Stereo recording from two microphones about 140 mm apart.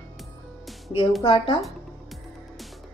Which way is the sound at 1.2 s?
35° left (ahead or behind).